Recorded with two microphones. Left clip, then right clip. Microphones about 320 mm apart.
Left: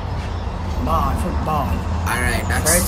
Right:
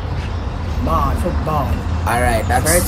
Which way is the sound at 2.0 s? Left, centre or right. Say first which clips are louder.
Right 5 dB; centre.